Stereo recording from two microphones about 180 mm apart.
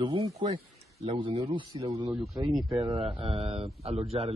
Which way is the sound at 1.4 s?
20° right (ahead or behind).